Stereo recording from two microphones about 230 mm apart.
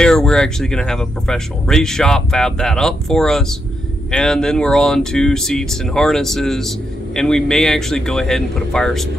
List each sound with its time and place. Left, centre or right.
0.0 s speech: centre